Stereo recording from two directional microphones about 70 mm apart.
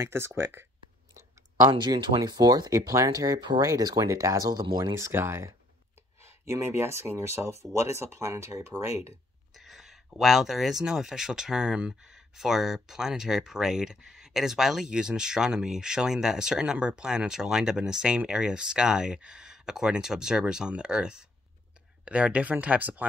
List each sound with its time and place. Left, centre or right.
0.0 s speech: right
1.7 s speech: right
2.7 s speech: right
3.6 s speech: right
4.9 s speech: right
9.6 s speech: centre; by 23.0 s right